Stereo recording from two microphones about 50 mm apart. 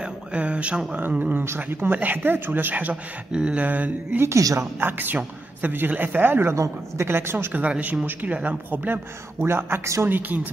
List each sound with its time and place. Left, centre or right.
0.0 s a sound: right
1.4 s a woman's voice: right
4.2 s a woman's voice: right
6.5 s a man's voice: right
7.1 s a woman's voice: right
7.5 s speech: right